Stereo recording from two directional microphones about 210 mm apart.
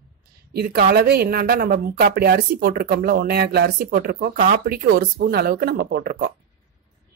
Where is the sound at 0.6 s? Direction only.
45° right (ahead or behind).